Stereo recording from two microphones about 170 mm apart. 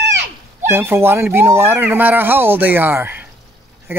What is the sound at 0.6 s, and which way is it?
A man's voice, 15° right (ahead or behind).